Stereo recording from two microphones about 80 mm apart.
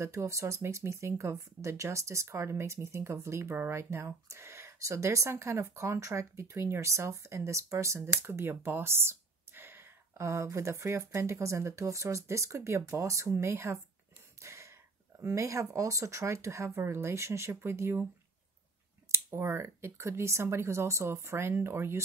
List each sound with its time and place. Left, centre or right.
0.0 s speech: right
19.1 s speech: right